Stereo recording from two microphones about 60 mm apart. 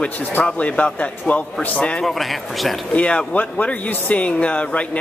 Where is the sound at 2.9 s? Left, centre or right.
Left.